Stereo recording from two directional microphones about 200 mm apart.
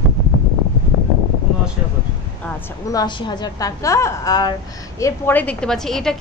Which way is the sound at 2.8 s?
20° left (ahead or behind).